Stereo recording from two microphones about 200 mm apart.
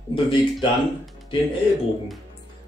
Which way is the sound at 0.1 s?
25° left (ahead or behind).